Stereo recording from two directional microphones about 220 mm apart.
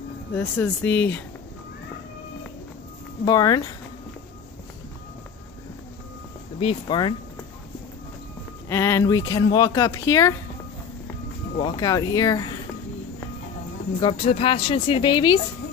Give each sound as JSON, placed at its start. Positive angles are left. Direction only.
{"t": 0.3, "sound": "speech", "side_deg": 10}
{"t": 3.3, "sound": "speech", "side_deg": 20}
{"t": 6.6, "sound": "speech", "side_deg": 20}
{"t": 8.6, "sound": "speech", "side_deg": 10}
{"t": 11.5, "sound": "speech", "side_deg": 20}
{"t": 14.0, "sound": "speech", "side_deg": 25}